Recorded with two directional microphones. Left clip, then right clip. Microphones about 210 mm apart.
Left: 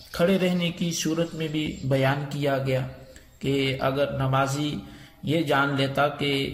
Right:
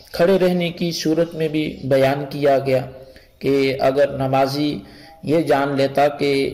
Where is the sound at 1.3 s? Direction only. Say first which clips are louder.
Right 8 dB; 10° right (ahead or behind).